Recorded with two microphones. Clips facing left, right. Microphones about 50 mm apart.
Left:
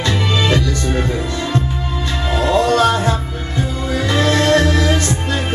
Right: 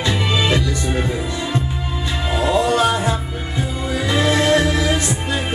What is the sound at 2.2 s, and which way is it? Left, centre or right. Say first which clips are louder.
Music: left 2 dB; centre.